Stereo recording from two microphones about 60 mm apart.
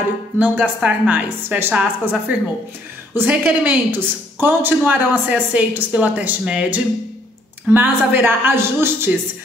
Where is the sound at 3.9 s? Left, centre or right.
Right.